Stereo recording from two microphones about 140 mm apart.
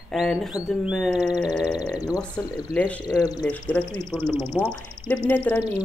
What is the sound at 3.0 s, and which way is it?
Speech, 30° left (ahead or behind).